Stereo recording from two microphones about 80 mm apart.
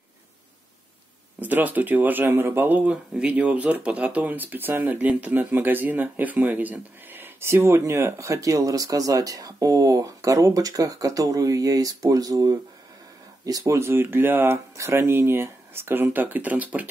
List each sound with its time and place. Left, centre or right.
1.4 s speech: right
13.7 s speech: right